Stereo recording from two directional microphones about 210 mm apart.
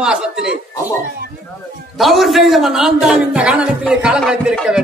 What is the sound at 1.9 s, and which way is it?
A man's voice, centre (ahead or behind).